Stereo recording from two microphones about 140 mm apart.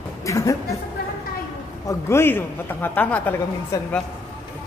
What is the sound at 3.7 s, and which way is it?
Speech, 25° left (ahead or behind).